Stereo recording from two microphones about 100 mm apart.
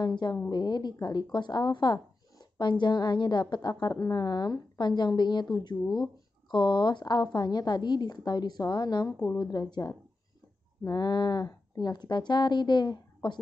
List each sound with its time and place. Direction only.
0.0 s a woman's voice: 45° left (ahead or behind)